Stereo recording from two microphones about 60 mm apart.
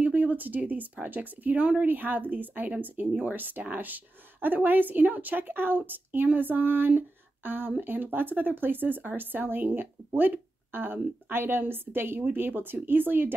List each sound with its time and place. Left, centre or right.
0.0 s speech: right